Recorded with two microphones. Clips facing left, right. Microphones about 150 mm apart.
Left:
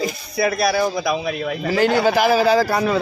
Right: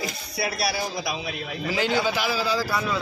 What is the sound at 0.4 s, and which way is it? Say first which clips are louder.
A man's voice: left 9 dB; 50° left (ahead or behind).